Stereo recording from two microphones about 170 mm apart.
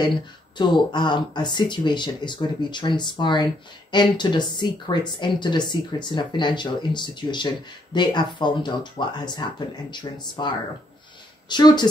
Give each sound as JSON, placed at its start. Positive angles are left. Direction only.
{"t": 0.6, "sound": "speech", "side_deg": 25}